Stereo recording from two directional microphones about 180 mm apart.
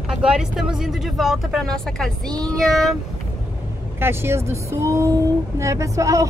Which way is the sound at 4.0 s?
15° right (ahead or behind).